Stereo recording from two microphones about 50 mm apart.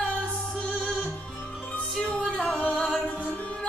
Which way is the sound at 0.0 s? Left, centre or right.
Left.